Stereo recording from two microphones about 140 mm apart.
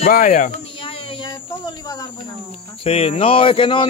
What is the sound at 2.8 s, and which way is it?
Speech, 45° left (ahead or behind).